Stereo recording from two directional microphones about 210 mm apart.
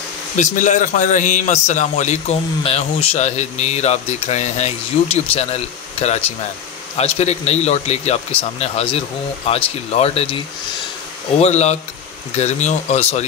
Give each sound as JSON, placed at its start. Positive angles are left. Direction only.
{"t": 0.4, "sound": "a man's voice", "side_deg": 35}